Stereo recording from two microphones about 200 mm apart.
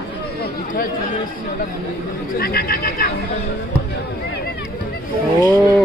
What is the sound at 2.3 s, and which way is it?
Speech, 50° left (ahead or behind).